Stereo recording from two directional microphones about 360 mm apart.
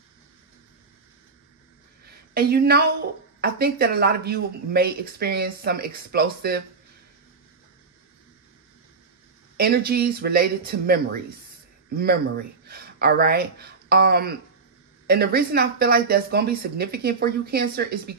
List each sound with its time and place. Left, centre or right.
2.0 s a sound: right
3.3 s speech: right
9.6 s speech: right
12.0 s speech: right